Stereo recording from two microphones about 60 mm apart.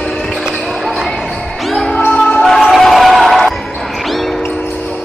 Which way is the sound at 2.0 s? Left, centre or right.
Left.